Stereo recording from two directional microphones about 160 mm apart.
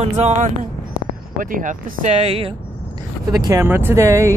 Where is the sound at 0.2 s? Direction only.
45° right (ahead or behind).